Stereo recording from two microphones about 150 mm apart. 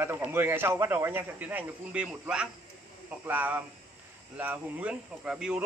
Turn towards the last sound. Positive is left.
turn(degrees=-5)  # may be behind; listen again after turning